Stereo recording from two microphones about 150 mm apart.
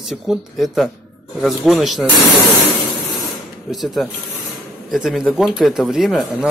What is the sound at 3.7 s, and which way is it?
Speech, centre (ahead or behind).